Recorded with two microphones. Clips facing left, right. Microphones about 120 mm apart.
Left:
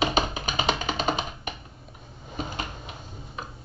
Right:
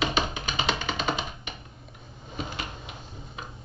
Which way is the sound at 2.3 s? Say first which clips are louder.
Left 2 dB; 45° left (ahead or behind).